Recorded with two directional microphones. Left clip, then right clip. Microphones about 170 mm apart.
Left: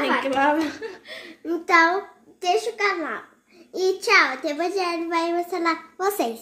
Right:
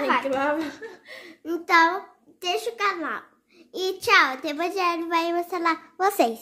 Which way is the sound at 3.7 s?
5° right (ahead or behind).